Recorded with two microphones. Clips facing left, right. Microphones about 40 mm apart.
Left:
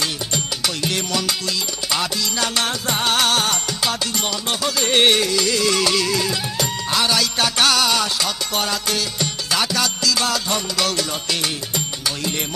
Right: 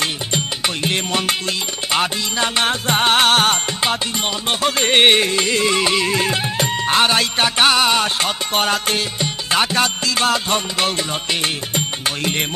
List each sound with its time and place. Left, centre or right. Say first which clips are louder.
0.8 s music: right 3 dB; right